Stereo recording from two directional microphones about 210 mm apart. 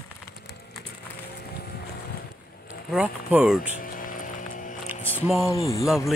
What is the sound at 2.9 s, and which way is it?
Speech, 5° right (ahead or behind).